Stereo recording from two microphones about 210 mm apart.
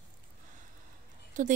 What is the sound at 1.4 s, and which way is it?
Speech, 35° right (ahead or behind).